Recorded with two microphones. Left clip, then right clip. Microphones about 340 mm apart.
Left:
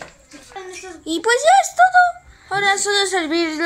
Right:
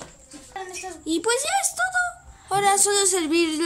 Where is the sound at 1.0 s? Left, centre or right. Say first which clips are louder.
Left 9 dB; centre.